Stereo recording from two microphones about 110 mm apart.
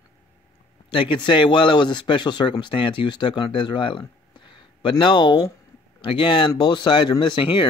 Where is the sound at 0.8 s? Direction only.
50° left (ahead or behind).